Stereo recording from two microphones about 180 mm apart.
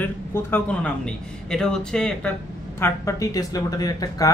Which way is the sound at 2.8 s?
15° left (ahead or behind).